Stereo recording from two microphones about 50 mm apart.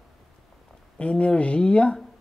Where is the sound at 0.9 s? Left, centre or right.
Left.